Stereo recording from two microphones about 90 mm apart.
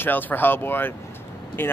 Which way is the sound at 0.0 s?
20° left (ahead or behind).